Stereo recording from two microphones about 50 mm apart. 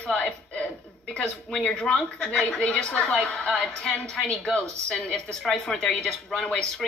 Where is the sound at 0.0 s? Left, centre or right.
Left.